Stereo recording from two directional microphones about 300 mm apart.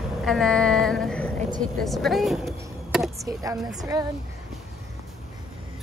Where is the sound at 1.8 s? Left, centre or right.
Centre.